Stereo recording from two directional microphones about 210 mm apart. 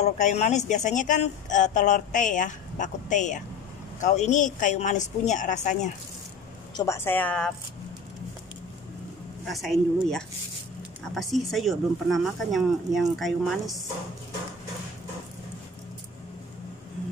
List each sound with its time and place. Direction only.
0.0 s speech: 30° left (ahead or behind)
6.8 s a woman's voice: 10° left (ahead or behind)
9.4 s speech: centre (ahead or behind)